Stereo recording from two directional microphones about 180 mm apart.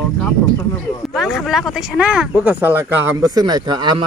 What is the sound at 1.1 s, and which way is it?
A woman's voice, centre (ahead or behind).